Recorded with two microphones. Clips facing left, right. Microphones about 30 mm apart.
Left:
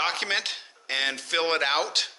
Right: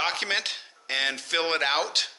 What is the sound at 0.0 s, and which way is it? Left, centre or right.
Speech, centre.